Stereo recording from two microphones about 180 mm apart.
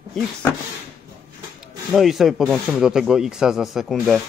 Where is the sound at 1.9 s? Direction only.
Centre (ahead or behind).